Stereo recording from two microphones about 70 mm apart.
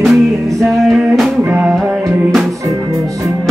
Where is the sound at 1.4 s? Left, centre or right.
Right.